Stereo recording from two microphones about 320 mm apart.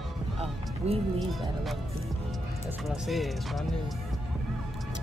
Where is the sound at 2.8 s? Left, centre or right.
Centre.